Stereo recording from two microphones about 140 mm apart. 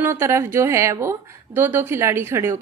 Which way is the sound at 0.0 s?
20° right (ahead or behind).